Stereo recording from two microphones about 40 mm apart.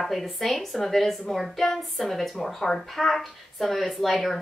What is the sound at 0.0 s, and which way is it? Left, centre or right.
A woman's voice, centre.